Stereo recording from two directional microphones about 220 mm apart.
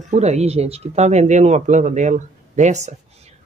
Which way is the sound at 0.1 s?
30° right (ahead or behind).